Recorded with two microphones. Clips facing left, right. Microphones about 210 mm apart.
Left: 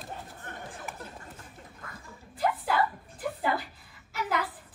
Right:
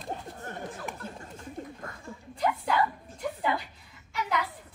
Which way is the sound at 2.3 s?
5° left (ahead or behind).